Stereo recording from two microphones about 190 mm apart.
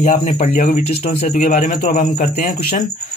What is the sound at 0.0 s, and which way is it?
Speech, 45° left (ahead or behind).